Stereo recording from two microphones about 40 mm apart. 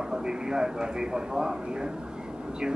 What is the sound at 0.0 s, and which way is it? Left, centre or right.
A man's voice, centre.